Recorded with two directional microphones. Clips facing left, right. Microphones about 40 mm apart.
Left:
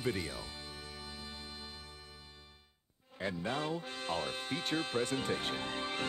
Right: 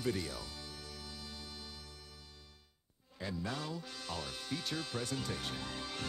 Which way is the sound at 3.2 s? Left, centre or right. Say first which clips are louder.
Left 4 dB; left.